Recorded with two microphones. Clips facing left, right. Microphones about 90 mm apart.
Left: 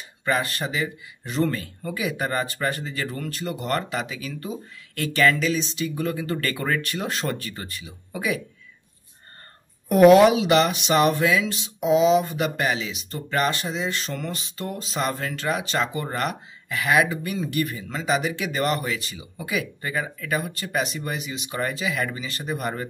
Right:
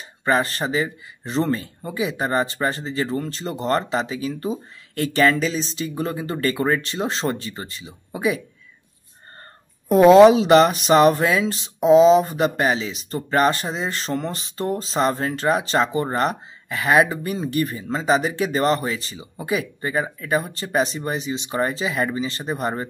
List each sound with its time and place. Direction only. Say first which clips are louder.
0.2 s speech: right 4 dB; 30° right (ahead or behind)
9.8 s speech: right 3 dB; 25° right (ahead or behind)